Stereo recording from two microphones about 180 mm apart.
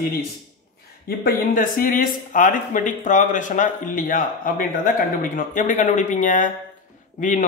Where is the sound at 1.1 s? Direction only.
55° left (ahead or behind).